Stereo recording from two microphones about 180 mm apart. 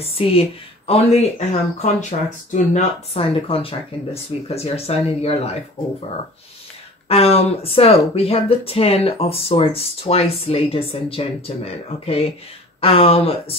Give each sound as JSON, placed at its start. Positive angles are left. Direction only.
{"t": 0.0, "sound": "speech", "side_deg": 30}
{"t": 7.1, "sound": "speech", "side_deg": 35}